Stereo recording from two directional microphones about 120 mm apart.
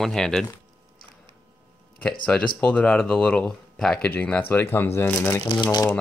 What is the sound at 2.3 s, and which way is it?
Speech, 10° left (ahead or behind).